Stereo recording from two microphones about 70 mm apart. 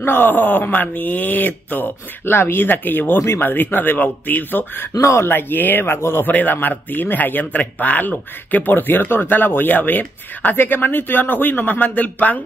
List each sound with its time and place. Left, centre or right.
0.0 s a man's voice: left
5.0 s speech: left
5.3 s a man's voice: left